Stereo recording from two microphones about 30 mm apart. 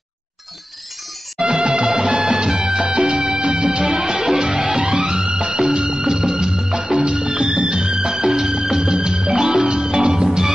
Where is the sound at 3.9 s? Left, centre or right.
Centre.